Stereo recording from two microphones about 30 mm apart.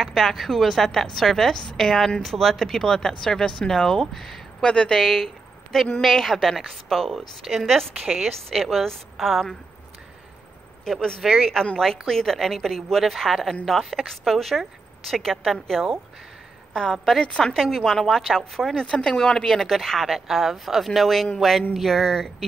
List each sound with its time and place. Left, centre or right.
0.0 s speech: centre
4.6 s a woman's voice: left
4.9 s speech: centre
8.0 s a woman's voice: centre
11.0 s a woman's voice: left
11.2 s speech: centre
11.7 s a woman's voice: centre
15.7 s speech: centre
16.7 s a woman's voice: left
17.6 s speech: centre
18.8 s a woman's voice: left
19.2 s speech: centre
20.1 s speech: centre